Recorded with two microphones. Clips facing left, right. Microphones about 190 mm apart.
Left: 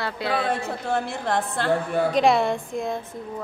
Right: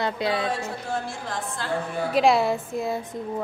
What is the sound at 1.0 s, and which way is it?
Speech, 65° left (ahead or behind).